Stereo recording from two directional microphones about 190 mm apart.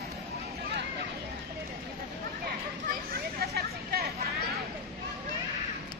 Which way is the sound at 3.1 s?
55° right (ahead or behind).